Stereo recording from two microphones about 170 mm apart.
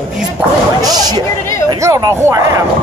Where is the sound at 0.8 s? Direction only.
25° right (ahead or behind).